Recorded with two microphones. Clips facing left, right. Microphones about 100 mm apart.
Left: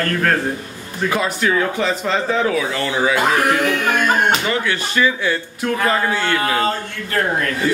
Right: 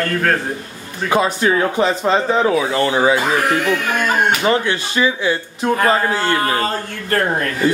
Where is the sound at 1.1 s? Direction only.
25° right (ahead or behind).